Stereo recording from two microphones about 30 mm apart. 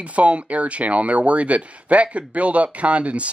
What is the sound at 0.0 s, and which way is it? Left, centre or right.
Speech, right.